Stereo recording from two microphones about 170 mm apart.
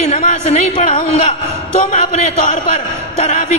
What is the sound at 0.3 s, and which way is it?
A man's voice, 40° left (ahead or behind).